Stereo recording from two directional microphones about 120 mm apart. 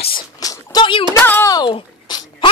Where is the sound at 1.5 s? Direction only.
35° left (ahead or behind).